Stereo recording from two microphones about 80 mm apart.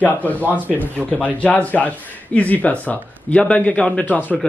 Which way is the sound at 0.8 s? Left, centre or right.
Centre.